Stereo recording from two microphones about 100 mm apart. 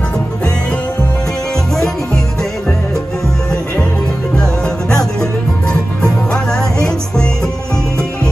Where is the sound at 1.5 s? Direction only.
5° left (ahead or behind).